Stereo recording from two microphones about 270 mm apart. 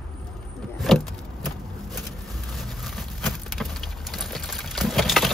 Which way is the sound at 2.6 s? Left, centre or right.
Centre.